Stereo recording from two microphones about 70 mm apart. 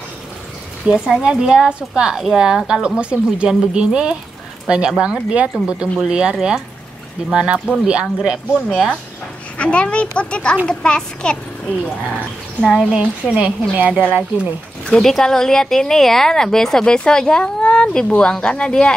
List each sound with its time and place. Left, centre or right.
0.8 s speech: centre
9.6 s speech: centre
12.6 s speech: centre
13.0 s a woman's voice: centre
14.9 s speech: centre